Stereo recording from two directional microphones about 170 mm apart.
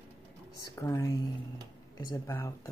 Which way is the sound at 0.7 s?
15° left (ahead or behind).